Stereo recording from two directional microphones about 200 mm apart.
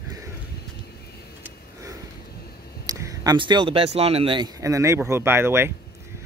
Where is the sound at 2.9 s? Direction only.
15° right (ahead or behind).